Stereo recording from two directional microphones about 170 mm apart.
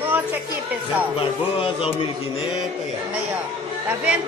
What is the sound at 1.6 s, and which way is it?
Speech, 35° left (ahead or behind).